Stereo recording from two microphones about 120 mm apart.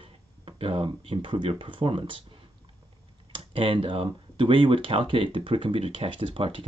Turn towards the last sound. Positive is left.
turn(degrees=-50)  # may be behind; listen again after turning